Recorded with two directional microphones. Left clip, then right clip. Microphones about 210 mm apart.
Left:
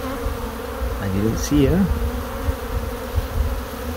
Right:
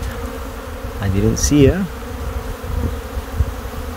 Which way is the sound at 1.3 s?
55° right (ahead or behind).